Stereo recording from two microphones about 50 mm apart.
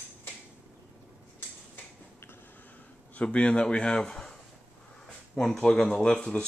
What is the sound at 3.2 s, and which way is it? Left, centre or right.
Speech, left.